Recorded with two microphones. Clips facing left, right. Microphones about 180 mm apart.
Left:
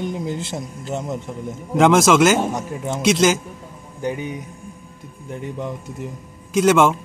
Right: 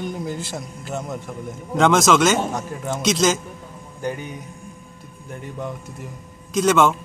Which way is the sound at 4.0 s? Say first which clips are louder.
Left 3 dB; 15° left (ahead or behind).